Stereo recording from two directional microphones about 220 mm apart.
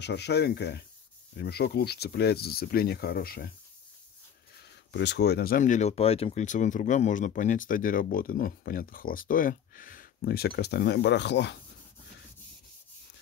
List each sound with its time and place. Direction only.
0.0 s speech: 50° left (ahead or behind)
4.9 s speech: 50° left (ahead or behind)